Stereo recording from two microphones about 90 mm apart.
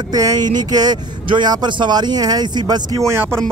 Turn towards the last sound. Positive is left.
turn(degrees=-30)  # may be behind; listen again after turning